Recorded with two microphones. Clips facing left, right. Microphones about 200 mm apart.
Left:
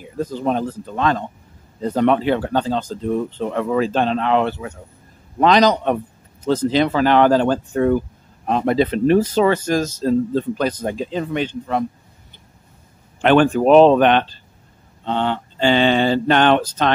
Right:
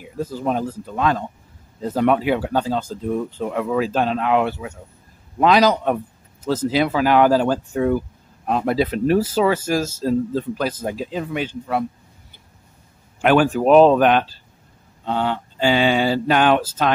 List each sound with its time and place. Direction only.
0.0 s speech: 5° right (ahead or behind)
13.2 s speech: 5° right (ahead or behind)